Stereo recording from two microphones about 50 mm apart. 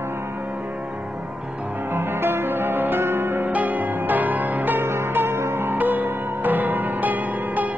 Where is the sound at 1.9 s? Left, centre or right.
Right.